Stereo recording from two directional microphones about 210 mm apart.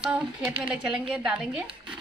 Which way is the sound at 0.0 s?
5° right (ahead or behind).